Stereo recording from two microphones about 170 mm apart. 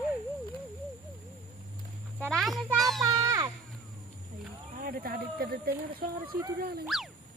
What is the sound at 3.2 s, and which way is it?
Music, 20° right (ahead or behind).